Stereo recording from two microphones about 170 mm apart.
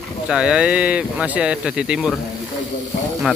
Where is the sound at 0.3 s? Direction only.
5° right (ahead or behind).